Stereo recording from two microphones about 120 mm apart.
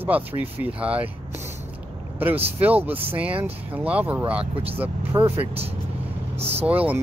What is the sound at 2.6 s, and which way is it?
Speech, 10° right (ahead or behind).